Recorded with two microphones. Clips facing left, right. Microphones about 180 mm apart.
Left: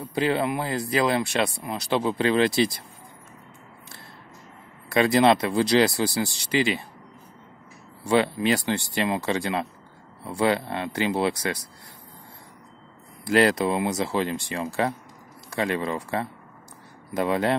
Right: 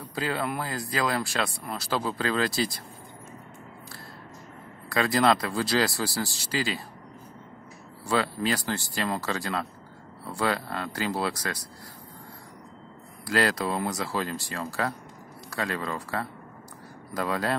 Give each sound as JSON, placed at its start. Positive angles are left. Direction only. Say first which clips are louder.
{"t": 0.0, "sound": "speech", "louder": "left 6 dB", "side_deg": 25}
{"t": 4.8, "sound": "speech", "louder": "left 4 dB", "side_deg": 20}
{"t": 8.0, "sound": "speech", "louder": "left 5 dB", "side_deg": 20}
{"t": 13.3, "sound": "speech", "louder": "left 6 dB", "side_deg": 25}